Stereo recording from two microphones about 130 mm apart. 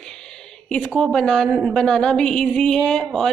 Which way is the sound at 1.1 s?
5° left (ahead or behind).